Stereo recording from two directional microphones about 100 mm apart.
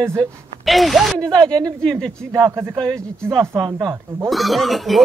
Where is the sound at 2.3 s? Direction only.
25° right (ahead or behind).